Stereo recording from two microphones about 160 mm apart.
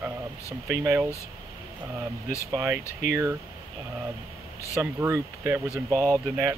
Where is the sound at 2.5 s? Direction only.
15° right (ahead or behind).